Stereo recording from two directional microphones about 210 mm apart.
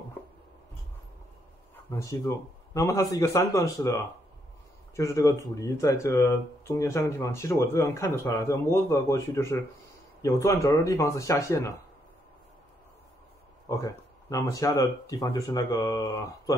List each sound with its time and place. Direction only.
1.9 s speech: 15° left (ahead or behind)
4.9 s speech: 15° left (ahead or behind)
14.3 s speech: 15° left (ahead or behind)